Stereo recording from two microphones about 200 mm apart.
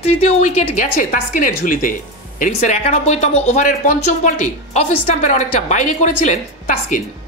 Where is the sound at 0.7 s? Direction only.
40° left (ahead or behind).